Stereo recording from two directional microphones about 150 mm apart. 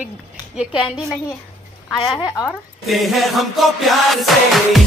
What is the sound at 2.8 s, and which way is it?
A woman's voice, centre (ahead or behind).